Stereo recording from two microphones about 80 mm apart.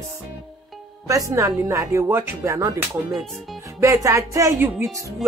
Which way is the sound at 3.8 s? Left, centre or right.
Right.